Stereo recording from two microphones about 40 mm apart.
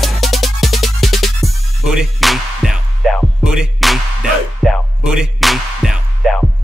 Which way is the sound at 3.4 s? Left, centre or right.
Centre.